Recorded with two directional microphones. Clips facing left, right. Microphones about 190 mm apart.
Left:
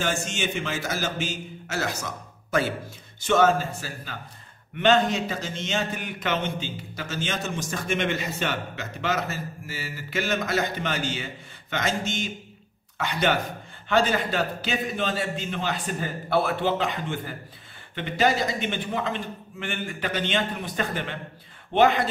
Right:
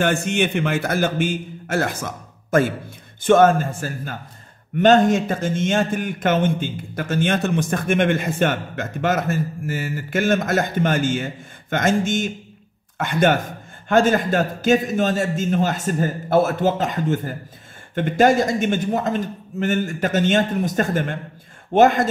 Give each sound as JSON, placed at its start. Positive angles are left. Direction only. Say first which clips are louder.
{"t": 0.0, "sound": "a man's voice", "louder": "right 8 dB", "side_deg": -60}